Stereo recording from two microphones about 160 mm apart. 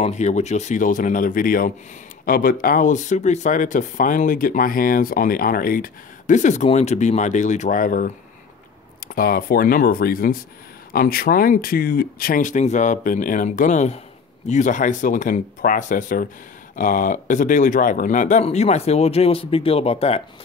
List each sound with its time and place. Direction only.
0.0 s speech: 45° left (ahead or behind)